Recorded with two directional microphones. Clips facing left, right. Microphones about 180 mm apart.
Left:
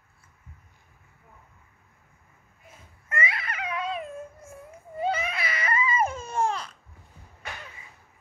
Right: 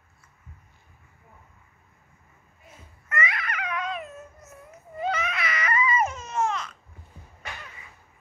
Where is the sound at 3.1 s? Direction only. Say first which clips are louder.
Right 1 dB; 30° left (ahead or behind).